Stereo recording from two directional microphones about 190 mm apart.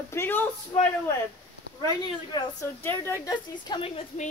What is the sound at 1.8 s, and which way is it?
A woman's voice, 20° left (ahead or behind).